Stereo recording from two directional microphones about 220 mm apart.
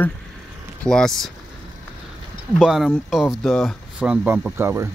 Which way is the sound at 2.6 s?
Centre (ahead or behind).